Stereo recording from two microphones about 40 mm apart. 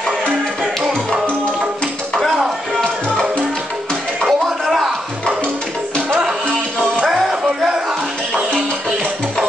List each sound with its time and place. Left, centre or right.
2.8 s music: left
4.2 s music: centre
7.1 s music: centre